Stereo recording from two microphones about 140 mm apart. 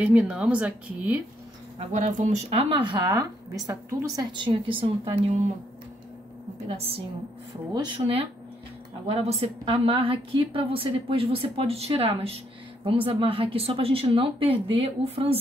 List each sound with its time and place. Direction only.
0.0 s speech: 5° right (ahead or behind)
1.8 s speech: 55° right (ahead or behind)
2.8 s speech: 35° right (ahead or behind)
6.7 s a woman's voice: 45° right (ahead or behind)
9.0 s a woman's voice: 50° right (ahead or behind)